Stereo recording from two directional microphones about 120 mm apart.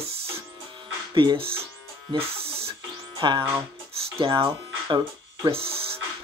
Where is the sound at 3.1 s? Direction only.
40° right (ahead or behind).